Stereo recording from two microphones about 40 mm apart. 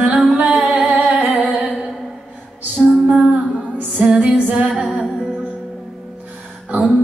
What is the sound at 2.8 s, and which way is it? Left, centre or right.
Music, right.